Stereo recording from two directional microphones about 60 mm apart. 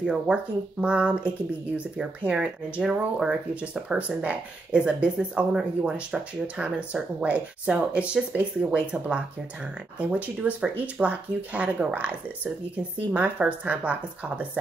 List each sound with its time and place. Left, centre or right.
0.0 s speech: centre
13.1 s speech: right